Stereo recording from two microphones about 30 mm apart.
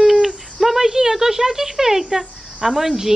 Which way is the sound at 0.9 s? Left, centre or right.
Centre.